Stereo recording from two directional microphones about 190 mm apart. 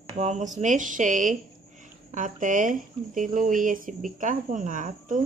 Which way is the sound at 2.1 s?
45° right (ahead or behind).